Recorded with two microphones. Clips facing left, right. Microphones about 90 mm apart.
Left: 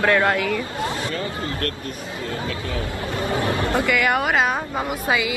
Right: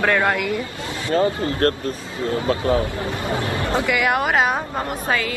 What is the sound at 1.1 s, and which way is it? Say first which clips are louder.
Speech: right 8 dB; 35° right (ahead or behind).